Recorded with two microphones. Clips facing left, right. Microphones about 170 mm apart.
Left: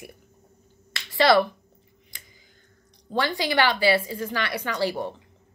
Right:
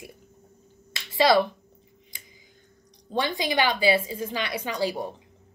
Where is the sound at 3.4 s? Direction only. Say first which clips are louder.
Left 2 dB; 15° right (ahead or behind).